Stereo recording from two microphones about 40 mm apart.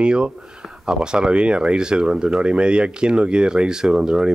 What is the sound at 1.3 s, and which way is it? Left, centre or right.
Speech, right.